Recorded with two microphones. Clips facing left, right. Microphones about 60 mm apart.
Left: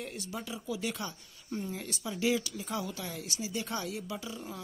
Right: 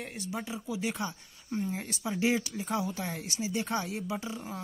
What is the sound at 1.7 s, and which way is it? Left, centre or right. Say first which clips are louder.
Speech: right 3 dB; right.